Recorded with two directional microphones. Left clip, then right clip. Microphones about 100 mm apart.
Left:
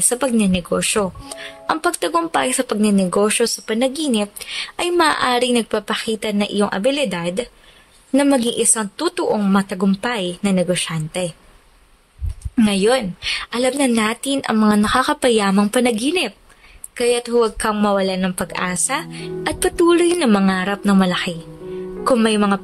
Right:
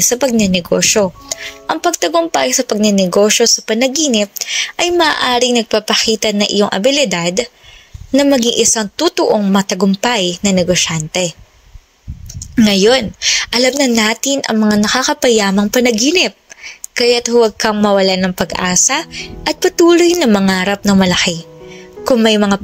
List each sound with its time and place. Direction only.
0.1 s speech: 25° right (ahead or behind)
5.7 s speech: 35° right (ahead or behind)
12.6 s speech: 50° right (ahead or behind)
13.2 s speech: 30° right (ahead or behind)
15.7 s speech: 30° right (ahead or behind)